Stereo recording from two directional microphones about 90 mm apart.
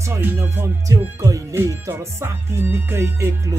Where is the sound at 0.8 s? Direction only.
40° right (ahead or behind).